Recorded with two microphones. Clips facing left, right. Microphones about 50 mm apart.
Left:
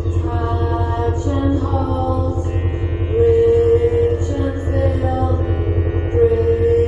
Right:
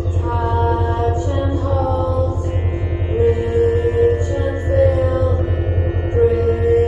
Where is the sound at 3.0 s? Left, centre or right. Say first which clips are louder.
Left 5 dB; right.